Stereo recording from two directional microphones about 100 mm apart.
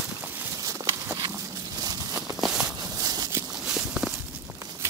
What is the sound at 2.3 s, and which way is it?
Walk, 5° right (ahead or behind).